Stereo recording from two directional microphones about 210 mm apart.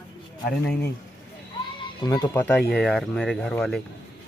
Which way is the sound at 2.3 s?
10° left (ahead or behind).